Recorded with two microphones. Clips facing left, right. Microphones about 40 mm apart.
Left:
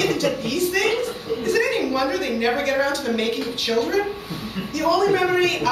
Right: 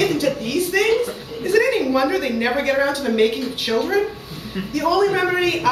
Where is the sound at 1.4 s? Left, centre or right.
Centre.